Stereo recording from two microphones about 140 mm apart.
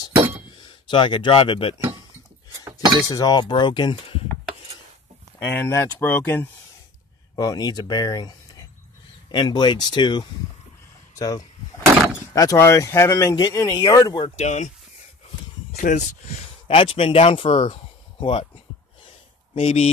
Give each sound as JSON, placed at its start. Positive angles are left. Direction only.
{"t": 0.7, "sound": "speech", "side_deg": 35}
{"t": 3.1, "sound": "speech", "side_deg": 25}
{"t": 5.4, "sound": "speech", "side_deg": 15}
{"t": 7.3, "sound": "speech", "side_deg": 25}
{"t": 14.3, "sound": "speech", "side_deg": 55}
{"t": 15.7, "sound": "speech", "side_deg": 60}
{"t": 19.5, "sound": "speech", "side_deg": 50}